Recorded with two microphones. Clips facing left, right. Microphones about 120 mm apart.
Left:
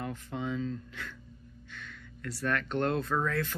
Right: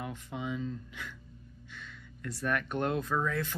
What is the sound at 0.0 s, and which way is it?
Speech, 15° right (ahead or behind).